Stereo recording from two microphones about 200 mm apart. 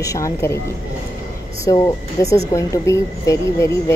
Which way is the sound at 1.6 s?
15° left (ahead or behind).